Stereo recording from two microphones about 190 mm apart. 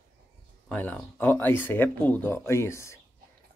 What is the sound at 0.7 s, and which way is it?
Speech, 10° left (ahead or behind).